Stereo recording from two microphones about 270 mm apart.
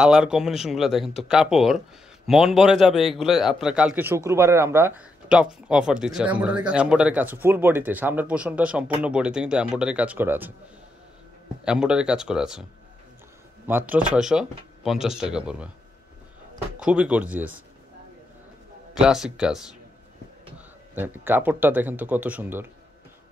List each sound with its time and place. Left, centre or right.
0.0 s a man's voice: centre
11.6 s a man's voice: centre
13.7 s a man's voice: centre
16.8 s a man's voice: centre
18.9 s a man's voice: centre